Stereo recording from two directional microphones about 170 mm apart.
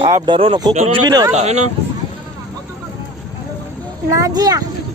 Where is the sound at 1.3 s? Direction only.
40° right (ahead or behind).